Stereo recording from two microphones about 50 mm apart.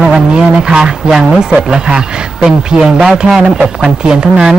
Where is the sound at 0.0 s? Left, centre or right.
Centre.